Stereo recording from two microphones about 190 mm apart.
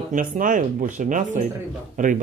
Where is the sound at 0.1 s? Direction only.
45° right (ahead or behind).